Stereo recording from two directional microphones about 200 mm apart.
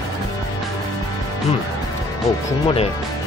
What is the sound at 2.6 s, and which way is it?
Speech, 30° left (ahead or behind).